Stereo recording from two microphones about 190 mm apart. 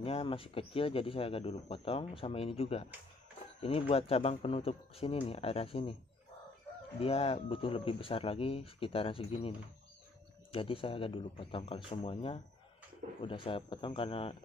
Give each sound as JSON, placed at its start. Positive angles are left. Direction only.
{"t": 0.0, "sound": "speech", "side_deg": 30}
{"t": 7.0, "sound": "speech", "side_deg": 30}
{"t": 10.5, "sound": "speech", "side_deg": 30}